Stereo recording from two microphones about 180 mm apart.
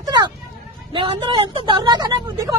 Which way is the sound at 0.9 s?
30° right (ahead or behind).